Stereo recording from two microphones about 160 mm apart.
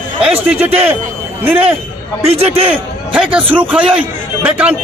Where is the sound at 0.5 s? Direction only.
10° right (ahead or behind).